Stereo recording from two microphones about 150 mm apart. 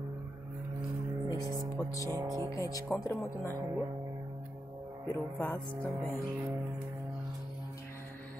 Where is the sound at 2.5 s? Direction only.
20° left (ahead or behind).